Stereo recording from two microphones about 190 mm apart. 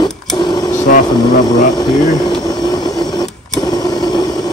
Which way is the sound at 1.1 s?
20° left (ahead or behind).